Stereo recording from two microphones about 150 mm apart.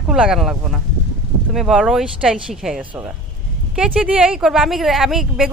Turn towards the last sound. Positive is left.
turn(degrees=0)  # may be behind; listen again after turning